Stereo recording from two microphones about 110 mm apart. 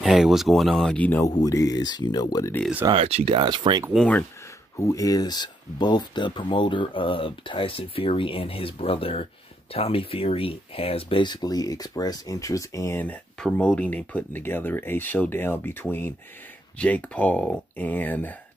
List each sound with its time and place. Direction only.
0.0 s speech: 5° right (ahead or behind)
0.9 s speech: 15° left (ahead or behind)
1.2 s speech: 30° left (ahead or behind)
2.9 s speech: 70° right (ahead or behind)
3.3 s speech: 45° right (ahead or behind)
4.7 s speech: 30° left (ahead or behind)
13.0 s speech: 10° left (ahead or behind)